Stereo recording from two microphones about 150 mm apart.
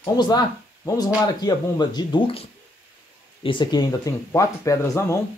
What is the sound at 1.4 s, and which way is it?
Speech, 30° left (ahead or behind).